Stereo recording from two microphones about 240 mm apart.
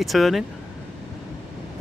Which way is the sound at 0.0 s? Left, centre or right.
Centre.